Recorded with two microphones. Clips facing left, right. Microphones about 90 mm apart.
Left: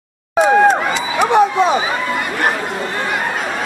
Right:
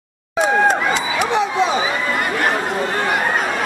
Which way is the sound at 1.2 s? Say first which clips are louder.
Left 7 dB; 50° left (ahead or behind).